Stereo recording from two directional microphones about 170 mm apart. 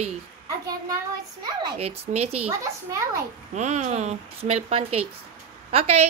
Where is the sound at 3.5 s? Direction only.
45° right (ahead or behind).